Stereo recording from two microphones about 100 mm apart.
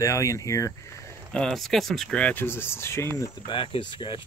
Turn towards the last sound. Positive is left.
turn(degrees=55)  # may be behind; listen again after turning